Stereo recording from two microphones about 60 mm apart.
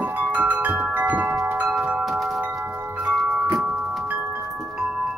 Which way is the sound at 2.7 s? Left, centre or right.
Right.